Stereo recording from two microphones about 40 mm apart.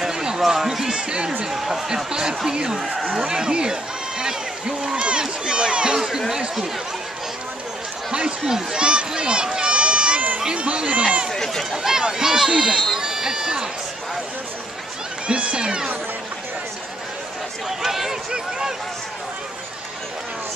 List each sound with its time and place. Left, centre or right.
0.1 s a man's voice: centre
1.4 s speech: centre
4.2 s a sound: centre
5.9 s a sound: centre
8.1 s run: centre
10.4 s speech: right
11.3 s speech: centre
11.7 s speech: centre
15.2 s speech: right
17.6 s speech: centre